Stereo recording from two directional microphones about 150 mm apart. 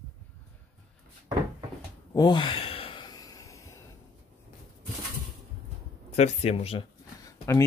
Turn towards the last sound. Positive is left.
turn(degrees=20)  # may be behind; listen again after turning